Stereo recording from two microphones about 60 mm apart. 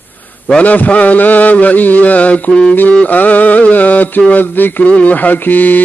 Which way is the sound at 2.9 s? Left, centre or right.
Left.